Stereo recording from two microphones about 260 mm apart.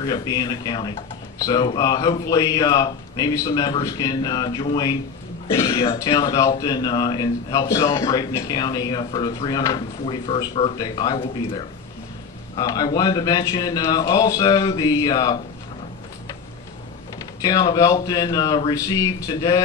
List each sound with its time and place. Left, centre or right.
0.0 s a man's voice: centre
12.5 s a man's voice: centre
17.4 s a man's voice: centre